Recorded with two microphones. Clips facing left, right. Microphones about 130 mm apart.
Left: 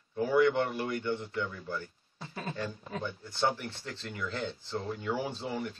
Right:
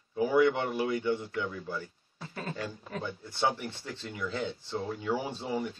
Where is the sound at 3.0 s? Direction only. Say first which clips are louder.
Right 1 dB; 5° right (ahead or behind).